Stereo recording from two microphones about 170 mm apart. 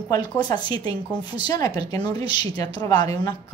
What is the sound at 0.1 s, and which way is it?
Speech, 25° left (ahead or behind).